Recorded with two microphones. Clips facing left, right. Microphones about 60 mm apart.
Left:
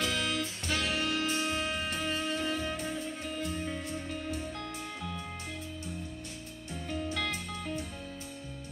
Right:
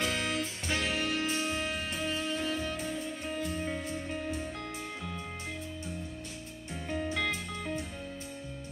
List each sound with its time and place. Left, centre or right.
0.0 s music: right
1.9 s music: centre
2.1 s music: centre
3.0 s music: centre
6.7 s music: right